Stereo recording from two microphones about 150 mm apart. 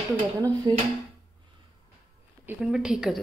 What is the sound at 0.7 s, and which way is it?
Speech, 25° right (ahead or behind).